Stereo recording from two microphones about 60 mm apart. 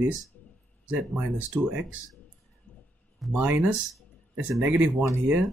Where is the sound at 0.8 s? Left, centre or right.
Right.